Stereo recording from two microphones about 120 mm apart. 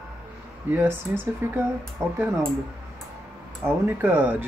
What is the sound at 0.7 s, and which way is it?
Speech, 15° right (ahead or behind).